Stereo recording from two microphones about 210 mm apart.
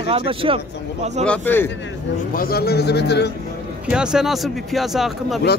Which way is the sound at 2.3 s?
45° left (ahead or behind).